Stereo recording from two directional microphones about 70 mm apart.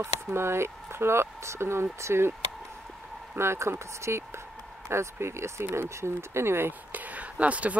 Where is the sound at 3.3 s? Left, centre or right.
Right.